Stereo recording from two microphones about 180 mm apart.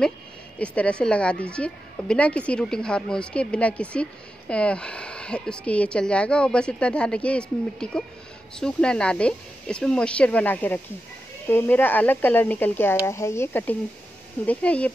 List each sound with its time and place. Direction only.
0.6 s a woman's voice: 5° left (ahead or behind)